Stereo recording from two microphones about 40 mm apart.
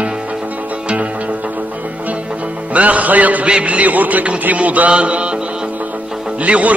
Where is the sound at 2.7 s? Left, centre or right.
Right.